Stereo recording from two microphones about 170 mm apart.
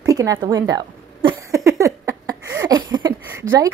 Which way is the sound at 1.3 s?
15° right (ahead or behind).